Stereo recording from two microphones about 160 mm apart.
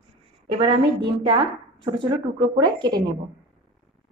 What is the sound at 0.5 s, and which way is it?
A woman's voice, 30° right (ahead or behind).